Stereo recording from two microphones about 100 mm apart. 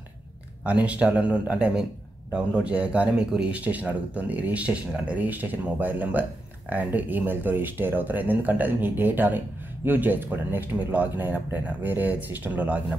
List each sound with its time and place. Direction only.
0.7 s speech: 15° right (ahead or behind)